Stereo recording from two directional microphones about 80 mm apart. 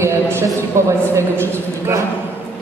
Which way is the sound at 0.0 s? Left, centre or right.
Right.